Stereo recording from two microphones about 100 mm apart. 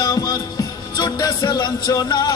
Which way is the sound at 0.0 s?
40° left (ahead or behind).